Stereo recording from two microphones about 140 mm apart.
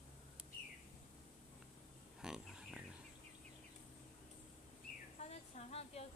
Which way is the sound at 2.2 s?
5° right (ahead or behind).